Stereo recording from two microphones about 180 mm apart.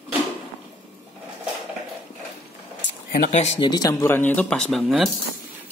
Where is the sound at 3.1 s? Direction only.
55° left (ahead or behind).